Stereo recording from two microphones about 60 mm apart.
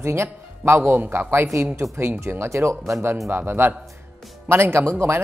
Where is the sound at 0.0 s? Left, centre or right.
Right.